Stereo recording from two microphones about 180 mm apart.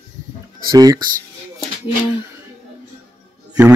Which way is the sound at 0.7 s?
20° right (ahead or behind).